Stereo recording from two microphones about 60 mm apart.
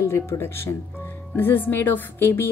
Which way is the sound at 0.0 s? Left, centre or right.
Left.